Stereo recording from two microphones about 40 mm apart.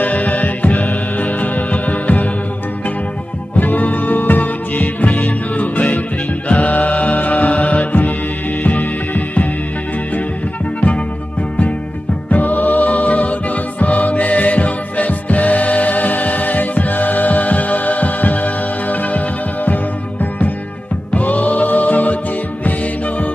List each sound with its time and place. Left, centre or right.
0.0 s music: left
3.5 s music: left
12.3 s music: left